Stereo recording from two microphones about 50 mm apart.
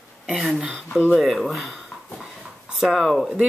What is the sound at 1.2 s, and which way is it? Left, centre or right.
Speech, centre.